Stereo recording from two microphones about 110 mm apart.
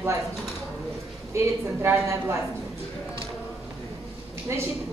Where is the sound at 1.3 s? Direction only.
25° right (ahead or behind).